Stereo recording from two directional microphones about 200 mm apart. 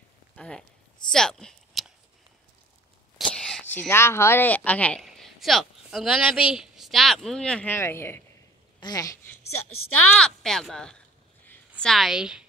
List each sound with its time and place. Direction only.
0.4 s a sound: 5° left (ahead or behind)
3.3 s whispering: 5° left (ahead or behind)
3.7 s speech: 10° left (ahead or behind)
8.7 s a sound: 20° left (ahead or behind)
9.4 s a woman's voice: 90° left
10.0 s speech: 5° left (ahead or behind)